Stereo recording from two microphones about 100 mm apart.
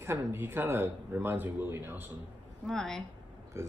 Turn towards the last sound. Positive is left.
turn(degrees=-25)  # may be behind; listen again after turning